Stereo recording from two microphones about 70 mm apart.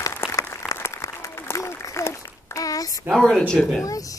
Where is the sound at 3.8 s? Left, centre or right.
Left.